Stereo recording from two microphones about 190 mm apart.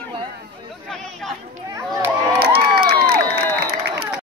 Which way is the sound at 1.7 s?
15° right (ahead or behind).